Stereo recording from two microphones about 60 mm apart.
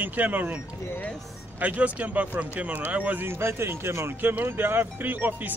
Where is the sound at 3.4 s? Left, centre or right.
Right.